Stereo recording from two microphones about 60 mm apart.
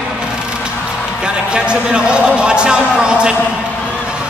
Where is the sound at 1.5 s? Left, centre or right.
Centre.